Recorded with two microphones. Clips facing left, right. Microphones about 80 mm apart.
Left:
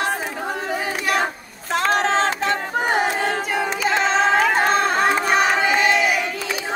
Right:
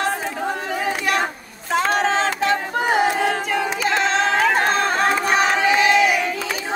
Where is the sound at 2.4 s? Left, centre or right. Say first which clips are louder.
Right 1 dB; centre.